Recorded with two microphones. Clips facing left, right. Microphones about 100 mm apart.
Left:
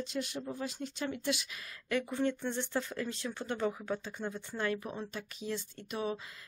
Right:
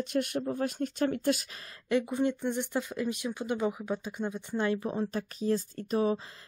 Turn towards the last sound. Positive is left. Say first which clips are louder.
# right 8 dB
turn(degrees=-35)  # may be behind; listen again after turning